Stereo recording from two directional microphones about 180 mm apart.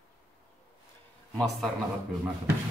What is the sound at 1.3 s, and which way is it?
Speech, centre (ahead or behind).